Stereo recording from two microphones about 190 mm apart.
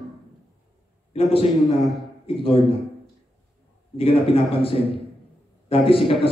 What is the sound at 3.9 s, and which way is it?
A man's voice, 30° left (ahead or behind).